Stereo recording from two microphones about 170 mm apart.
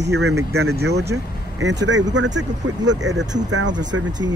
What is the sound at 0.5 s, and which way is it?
Speech, 70° right (ahead or behind).